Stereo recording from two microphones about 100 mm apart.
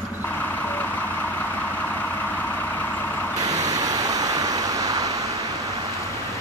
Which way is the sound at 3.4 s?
40° right (ahead or behind).